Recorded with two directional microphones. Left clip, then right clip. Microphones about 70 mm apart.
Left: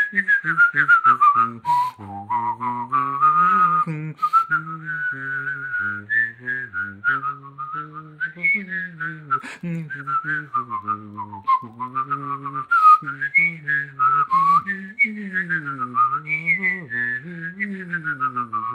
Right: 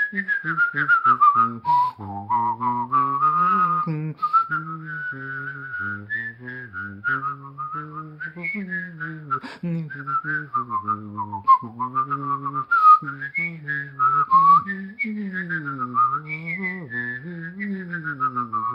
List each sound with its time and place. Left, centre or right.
0.0 s whistling: right
8.4 s whistling: right
9.0 s whistling: right
11.5 s whistling: right
11.8 s whistling: right
12.4 s whistling: right